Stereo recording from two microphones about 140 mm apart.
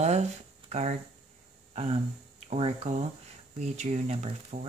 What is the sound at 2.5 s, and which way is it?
Speech, 50° right (ahead or behind).